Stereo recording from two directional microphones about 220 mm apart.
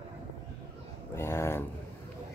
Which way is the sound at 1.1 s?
10° left (ahead or behind).